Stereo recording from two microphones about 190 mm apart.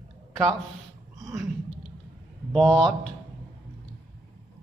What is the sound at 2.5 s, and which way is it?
Speech, 5° left (ahead or behind).